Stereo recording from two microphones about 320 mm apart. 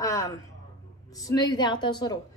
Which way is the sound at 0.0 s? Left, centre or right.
Centre.